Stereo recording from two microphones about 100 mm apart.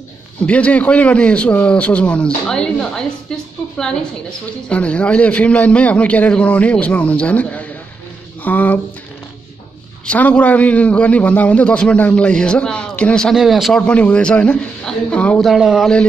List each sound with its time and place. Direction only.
0.5 s a man's voice: 15° left (ahead or behind)
10.0 s a man's voice: 15° left (ahead or behind)
13.8 s a man's voice: 10° left (ahead or behind)
15.4 s a man's voice: 5° right (ahead or behind)